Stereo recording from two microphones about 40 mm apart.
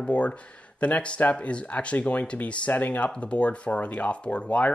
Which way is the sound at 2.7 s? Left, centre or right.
Left.